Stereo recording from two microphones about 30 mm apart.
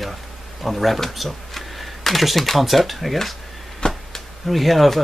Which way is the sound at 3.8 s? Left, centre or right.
Left.